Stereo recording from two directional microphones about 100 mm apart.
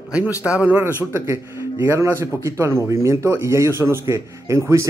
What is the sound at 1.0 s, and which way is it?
A man's voice, 30° right (ahead or behind).